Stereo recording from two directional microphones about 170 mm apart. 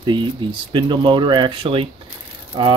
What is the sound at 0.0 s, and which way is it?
Speech, 25° right (ahead or behind).